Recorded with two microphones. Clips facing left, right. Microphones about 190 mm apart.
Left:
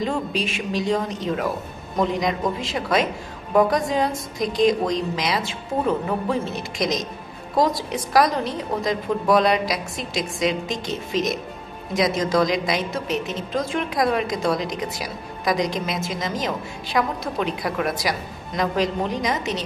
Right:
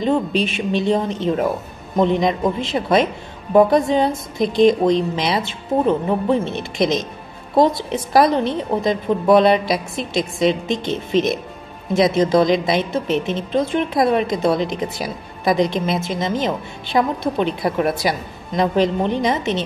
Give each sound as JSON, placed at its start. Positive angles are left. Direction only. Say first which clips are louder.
{"t": 0.4, "sound": "a woman's voice", "louder": "right 5 dB", "side_deg": -25}
{"t": 3.5, "sound": "a woman's voice", "louder": "right 5 dB", "side_deg": -25}